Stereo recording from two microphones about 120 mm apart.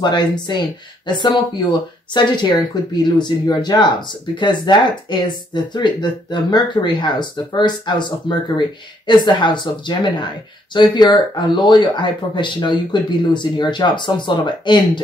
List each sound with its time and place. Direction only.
0.0 s speech: 35° left (ahead or behind)